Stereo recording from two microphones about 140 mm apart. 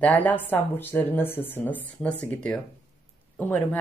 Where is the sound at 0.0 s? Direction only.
10° left (ahead or behind).